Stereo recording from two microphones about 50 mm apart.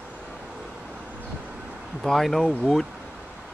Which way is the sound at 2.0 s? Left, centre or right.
Centre.